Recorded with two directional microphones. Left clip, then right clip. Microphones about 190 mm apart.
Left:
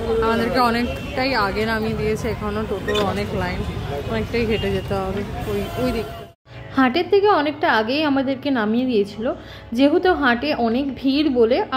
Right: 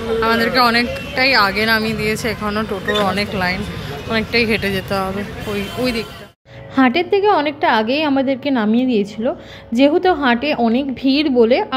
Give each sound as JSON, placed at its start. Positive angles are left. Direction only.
{"t": 0.2, "sound": "a sound", "side_deg": 5}
{"t": 0.6, "sound": "speech", "side_deg": 10}
{"t": 6.7, "sound": "a woman's voice", "side_deg": -25}